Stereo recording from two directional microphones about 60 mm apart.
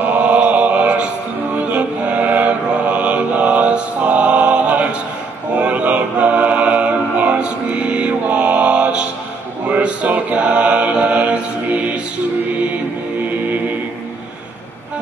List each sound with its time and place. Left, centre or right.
0.0 s mantra: right
5.6 s music: right
9.7 s mantra: right